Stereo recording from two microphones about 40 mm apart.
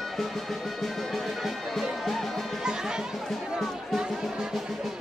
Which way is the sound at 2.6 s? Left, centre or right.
Centre.